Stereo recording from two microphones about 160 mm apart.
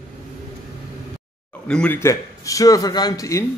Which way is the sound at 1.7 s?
5° left (ahead or behind).